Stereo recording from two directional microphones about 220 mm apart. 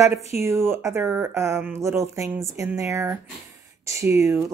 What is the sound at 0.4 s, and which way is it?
Speech, 10° right (ahead or behind).